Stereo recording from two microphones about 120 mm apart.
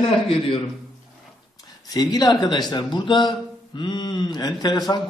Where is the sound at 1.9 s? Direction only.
35° left (ahead or behind).